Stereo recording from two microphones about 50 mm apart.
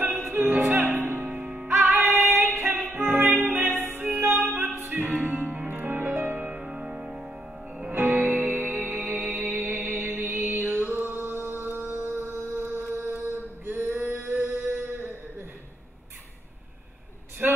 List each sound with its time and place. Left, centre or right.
0.0 s music: right
1.4 s music: centre
1.7 s music: right
6.6 s music: centre
7.9 s music: right
12.9 s singing: right
17.4 s a sound: right